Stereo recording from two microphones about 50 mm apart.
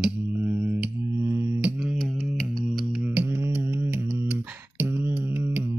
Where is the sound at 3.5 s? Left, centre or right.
Right.